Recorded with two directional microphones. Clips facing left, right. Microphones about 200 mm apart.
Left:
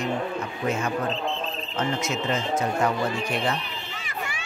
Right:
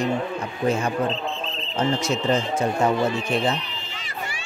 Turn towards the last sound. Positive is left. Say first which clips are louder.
# right 3 dB
turn(degrees=-25)  # may be behind; listen again after turning